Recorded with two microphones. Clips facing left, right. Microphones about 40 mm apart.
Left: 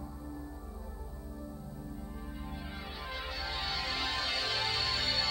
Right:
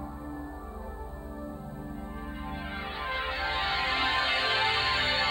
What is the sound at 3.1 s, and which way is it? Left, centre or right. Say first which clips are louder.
Music: right 8 dB; right.